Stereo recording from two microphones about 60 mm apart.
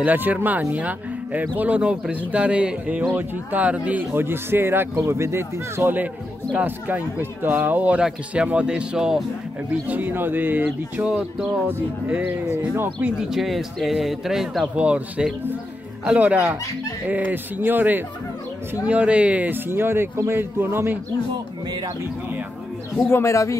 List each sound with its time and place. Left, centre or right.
0.0 s speech: right
4.1 s speech: right
6.6 s speech: right; by 9.2 s centre
9.8 s speech: right
11.1 s speech: centre
11.6 s speech: right
13.3 s a man's voice: centre
14.8 s speech: centre
18.9 s speech: right
19.7 s speech: right
22.9 s speech: left